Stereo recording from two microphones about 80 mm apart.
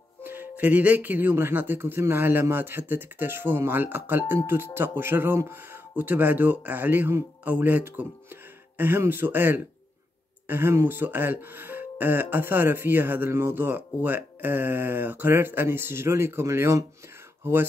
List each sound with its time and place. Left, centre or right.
0.2 s speech: right